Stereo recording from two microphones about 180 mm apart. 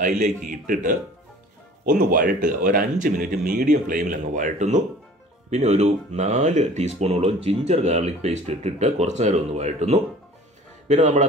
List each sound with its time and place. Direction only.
0.0 s speech: 45° right (ahead or behind)